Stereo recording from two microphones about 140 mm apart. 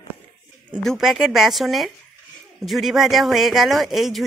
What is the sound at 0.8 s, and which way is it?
Speech, centre (ahead or behind).